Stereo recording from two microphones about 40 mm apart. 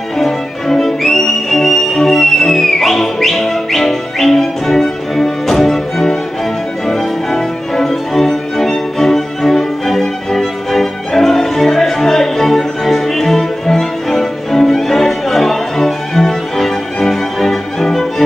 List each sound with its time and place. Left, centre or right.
0.2 s violin: centre
6.9 s music: centre